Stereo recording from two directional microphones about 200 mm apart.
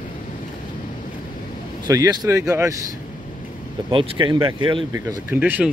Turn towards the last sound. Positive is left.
turn(degrees=-10)  # may be behind; listen again after turning